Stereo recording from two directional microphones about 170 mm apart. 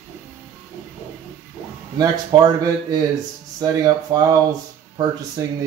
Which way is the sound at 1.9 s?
20° right (ahead or behind).